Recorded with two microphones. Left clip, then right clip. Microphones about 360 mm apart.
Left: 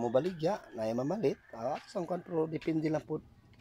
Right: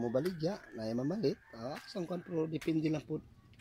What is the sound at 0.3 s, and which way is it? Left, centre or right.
Speech, left.